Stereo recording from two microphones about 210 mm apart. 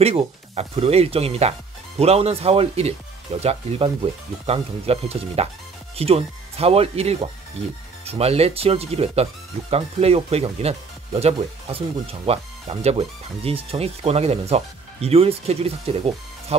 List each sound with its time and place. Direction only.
0.0 s speech: 30° right (ahead or behind)